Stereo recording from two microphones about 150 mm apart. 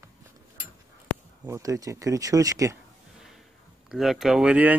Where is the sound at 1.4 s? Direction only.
20° right (ahead or behind).